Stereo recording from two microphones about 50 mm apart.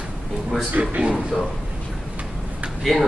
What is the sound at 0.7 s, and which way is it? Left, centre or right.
Speech, right.